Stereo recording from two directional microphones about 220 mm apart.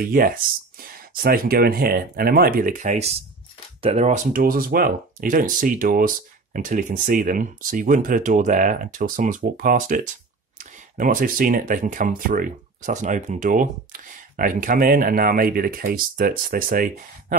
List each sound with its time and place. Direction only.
0.0 s speech: 40° right (ahead or behind)